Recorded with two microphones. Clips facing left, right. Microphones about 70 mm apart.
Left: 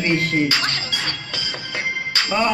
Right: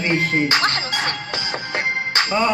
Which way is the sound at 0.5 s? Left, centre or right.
Right.